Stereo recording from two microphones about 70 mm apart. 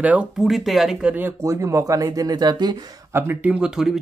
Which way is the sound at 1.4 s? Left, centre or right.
Right.